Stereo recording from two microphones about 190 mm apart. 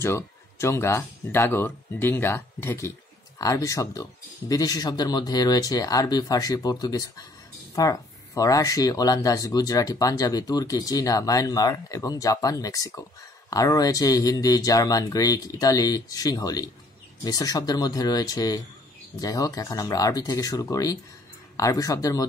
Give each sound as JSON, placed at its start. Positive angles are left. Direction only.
{"t": 0.0, "sound": "speech", "side_deg": 15}